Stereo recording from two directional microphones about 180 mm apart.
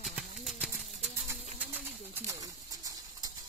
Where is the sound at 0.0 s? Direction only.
5° right (ahead or behind).